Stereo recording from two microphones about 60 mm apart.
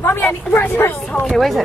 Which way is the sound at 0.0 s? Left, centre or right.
Left.